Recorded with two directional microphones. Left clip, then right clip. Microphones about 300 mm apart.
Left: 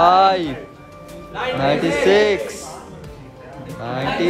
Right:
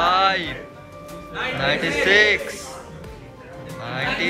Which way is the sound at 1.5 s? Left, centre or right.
Centre.